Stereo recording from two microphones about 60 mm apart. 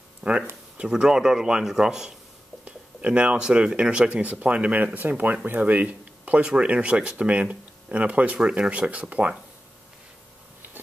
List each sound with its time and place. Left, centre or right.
0.2 s speech: right
2.6 s speech: right